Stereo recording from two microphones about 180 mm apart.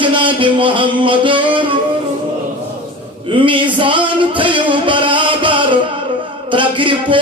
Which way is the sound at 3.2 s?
30° right (ahead or behind).